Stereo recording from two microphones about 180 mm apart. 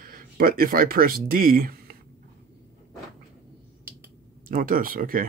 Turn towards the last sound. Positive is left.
turn(degrees=-50)  # may be behind; listen again after turning